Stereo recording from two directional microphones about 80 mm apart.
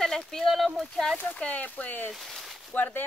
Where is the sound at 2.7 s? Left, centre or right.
Left.